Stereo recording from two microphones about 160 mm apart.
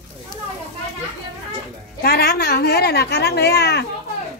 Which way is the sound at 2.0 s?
75° left (ahead or behind).